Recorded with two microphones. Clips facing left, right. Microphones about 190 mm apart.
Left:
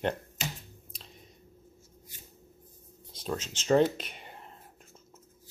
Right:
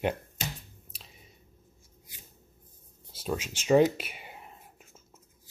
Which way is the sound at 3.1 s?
5° right (ahead or behind).